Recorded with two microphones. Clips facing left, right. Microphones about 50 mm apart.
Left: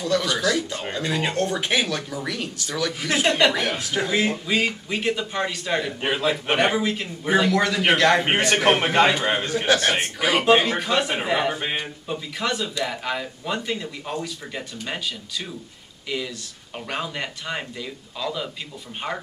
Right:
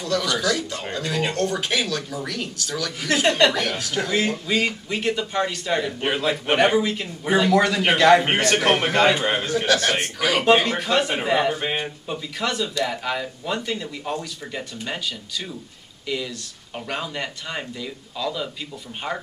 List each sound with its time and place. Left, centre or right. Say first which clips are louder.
0.6 s speech: left 1 dB; left
3.0 s a man's voice: right 2 dB; centre
3.5 s speech: even; left
4.5 s a man's voice: even; centre
8.4 s a man's voice: even; centre
9.2 s speech: even; centre
9.6 s speech: left 1 dB; centre
10.4 s a man's voice: right 1 dB; centre
11.7 s speech: right 1 dB; centre
12.4 s a man's voice: right 2 dB; centre
16.8 s a man's voice: even; centre